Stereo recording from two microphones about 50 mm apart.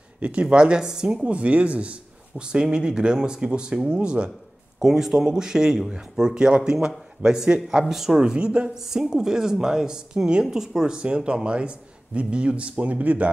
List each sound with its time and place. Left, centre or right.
0.2 s speech: right
4.7 s speech: centre
7.8 s speech: centre
8.2 s speech: right
8.7 s speech: centre
11.0 s speech: right